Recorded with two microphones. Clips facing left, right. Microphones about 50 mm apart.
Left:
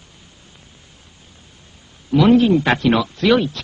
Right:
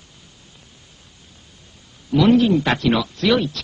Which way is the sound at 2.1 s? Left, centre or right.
Centre.